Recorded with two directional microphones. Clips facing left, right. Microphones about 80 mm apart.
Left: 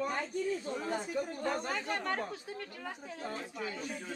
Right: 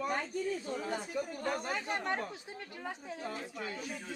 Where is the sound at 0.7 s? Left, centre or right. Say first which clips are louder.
Left 1 dB; centre.